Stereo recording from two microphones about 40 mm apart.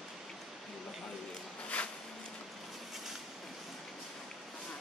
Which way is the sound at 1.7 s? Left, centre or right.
Left.